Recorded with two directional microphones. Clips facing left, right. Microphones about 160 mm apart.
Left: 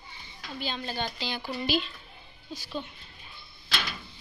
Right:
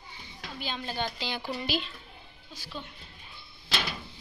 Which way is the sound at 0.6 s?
15° right (ahead or behind).